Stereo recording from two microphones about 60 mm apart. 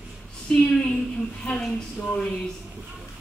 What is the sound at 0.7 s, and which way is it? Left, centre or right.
Speech, centre.